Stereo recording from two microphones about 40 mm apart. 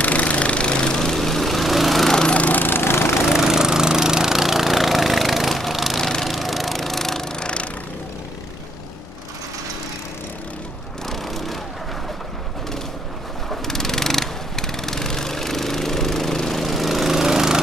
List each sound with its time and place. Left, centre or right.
0.0 s lawn mower: left
0.9 s lawn mower: centre
2.3 s lawn mower: left
2.8 s vehicle: left
3.3 s lawn mower: centre
5.6 s a sound: centre
5.9 s lawn mower: centre
6.2 s lawn mower: centre
11.1 s a sound: centre
13.5 s lawn mower: centre
16.3 s a sound: centre